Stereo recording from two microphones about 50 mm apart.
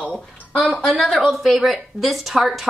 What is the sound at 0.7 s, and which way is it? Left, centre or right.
Speech, left.